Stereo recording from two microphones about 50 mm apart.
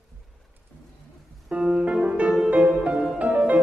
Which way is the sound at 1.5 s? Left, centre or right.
Centre.